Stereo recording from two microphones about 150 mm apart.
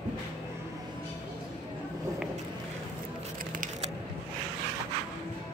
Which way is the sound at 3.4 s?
60° right (ahead or behind).